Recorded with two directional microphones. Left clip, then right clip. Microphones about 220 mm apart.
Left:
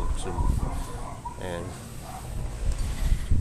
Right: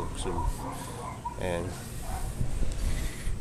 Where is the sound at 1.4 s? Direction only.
15° right (ahead or behind).